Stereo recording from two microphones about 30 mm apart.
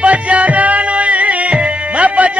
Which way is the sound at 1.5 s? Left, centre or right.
Right.